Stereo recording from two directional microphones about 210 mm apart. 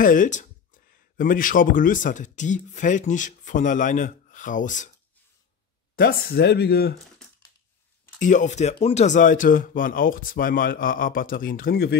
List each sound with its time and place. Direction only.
0.0 s speech: 40° left (ahead or behind)
5.9 s speech: 45° left (ahead or behind)
8.2 s speech: 35° left (ahead or behind)